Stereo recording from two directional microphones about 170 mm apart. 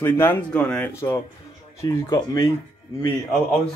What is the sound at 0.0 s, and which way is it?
A man's voice, 15° left (ahead or behind).